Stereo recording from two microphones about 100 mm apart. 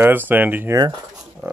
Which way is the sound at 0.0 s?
20° right (ahead or behind).